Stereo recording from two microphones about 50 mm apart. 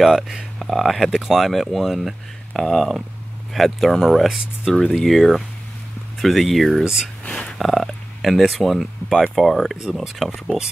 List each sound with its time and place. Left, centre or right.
0.0 s speech: centre
2.5 s speech: centre
6.8 s speech: centre
7.2 s speech: centre
7.5 s speech: centre